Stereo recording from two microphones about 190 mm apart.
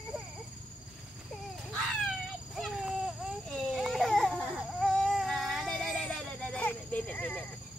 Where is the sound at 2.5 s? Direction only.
Centre (ahead or behind).